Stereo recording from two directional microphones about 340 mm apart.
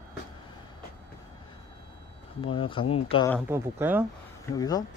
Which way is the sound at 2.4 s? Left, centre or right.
Centre.